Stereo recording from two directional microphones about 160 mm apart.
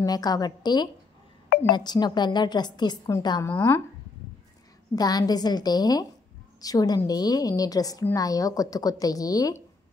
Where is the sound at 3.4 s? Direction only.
15° left (ahead or behind).